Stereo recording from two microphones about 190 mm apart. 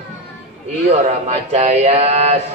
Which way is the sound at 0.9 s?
35° right (ahead or behind).